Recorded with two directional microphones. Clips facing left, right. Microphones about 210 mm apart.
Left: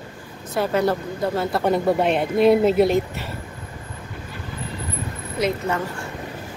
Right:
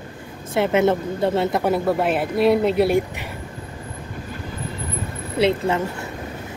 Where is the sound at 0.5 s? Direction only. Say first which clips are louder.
Right 3 dB; 20° right (ahead or behind).